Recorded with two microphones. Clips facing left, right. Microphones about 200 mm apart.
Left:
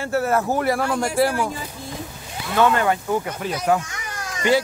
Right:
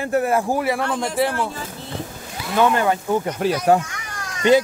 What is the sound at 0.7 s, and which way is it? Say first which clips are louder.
Speech: left 1 dB; 5° left (ahead or behind).